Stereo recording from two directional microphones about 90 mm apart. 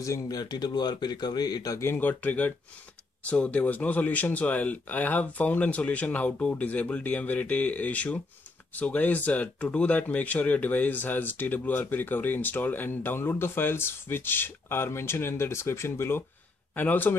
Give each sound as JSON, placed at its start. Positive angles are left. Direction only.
{"t": 0.0, "sound": "speech", "side_deg": 40}
{"t": 1.8, "sound": "speech", "side_deg": 25}